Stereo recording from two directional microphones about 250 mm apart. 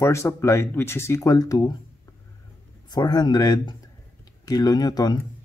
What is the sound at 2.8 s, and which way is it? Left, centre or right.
Speech, centre.